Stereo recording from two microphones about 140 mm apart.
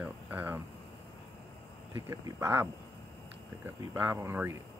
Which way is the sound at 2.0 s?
20° right (ahead or behind).